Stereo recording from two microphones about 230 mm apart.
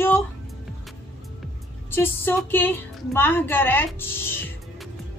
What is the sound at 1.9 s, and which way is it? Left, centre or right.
Speech, centre.